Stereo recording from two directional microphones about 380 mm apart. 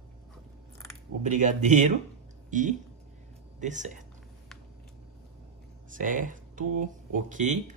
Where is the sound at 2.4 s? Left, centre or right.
Centre.